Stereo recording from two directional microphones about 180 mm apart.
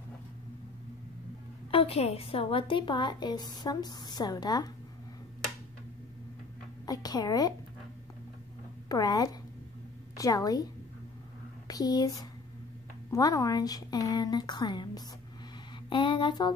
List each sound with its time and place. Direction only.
1.7 s a woman's voice: 30° left (ahead or behind)
6.9 s a woman's voice: 20° left (ahead or behind)
8.8 s a woman's voice: 20° left (ahead or behind)